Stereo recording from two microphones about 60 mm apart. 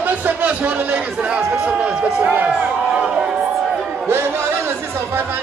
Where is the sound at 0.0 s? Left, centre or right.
Right.